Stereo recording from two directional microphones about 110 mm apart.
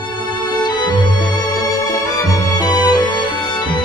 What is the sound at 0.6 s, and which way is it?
Music, 40° left (ahead or behind).